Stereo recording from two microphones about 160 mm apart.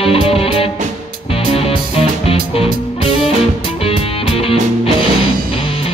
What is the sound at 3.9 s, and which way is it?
Music, 35° left (ahead or behind).